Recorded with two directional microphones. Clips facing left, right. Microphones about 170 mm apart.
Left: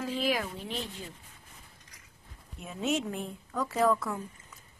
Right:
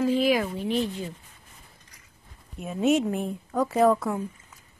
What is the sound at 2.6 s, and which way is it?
A woman's voice, 50° right (ahead or behind).